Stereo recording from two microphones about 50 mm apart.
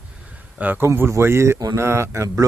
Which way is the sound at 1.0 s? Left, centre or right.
Right.